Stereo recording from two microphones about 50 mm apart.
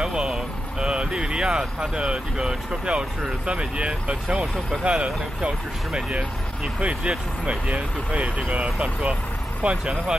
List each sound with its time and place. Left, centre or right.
0.0 s vehicle: centre
2.0 s speech: centre